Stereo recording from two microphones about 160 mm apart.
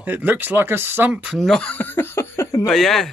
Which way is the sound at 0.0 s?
10° right (ahead or behind).